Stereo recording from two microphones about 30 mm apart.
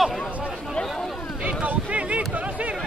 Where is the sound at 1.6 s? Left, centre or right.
Right.